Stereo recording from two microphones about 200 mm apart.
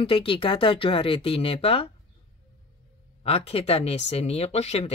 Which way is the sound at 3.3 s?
30° left (ahead or behind).